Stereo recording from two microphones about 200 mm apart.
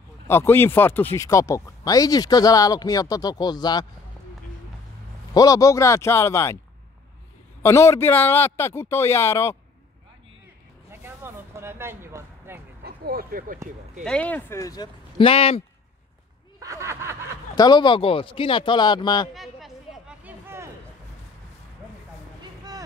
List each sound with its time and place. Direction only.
0.3 s speech: 10° left (ahead or behind)
5.3 s speech: 15° left (ahead or behind)
7.6 s speech: 15° left (ahead or behind)
10.9 s a sound: 10° right (ahead or behind)
12.8 s speech: 50° right (ahead or behind)
14.0 s speech: 5° left (ahead or behind); by 15.6 s 30° left (ahead or behind)
16.5 s snicker: 15° right (ahead or behind)
17.6 s speech: 20° left (ahead or behind)
19.3 s a sound: centre (ahead or behind)